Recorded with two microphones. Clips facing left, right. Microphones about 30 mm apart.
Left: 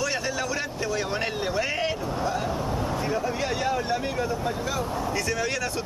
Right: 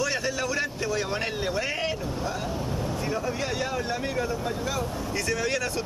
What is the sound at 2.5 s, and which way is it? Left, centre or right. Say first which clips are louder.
Vehicle: left 3 dB; left.